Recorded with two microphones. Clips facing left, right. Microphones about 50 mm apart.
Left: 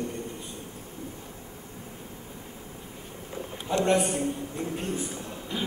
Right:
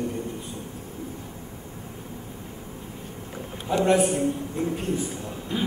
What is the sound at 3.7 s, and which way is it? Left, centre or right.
A man's voice, centre.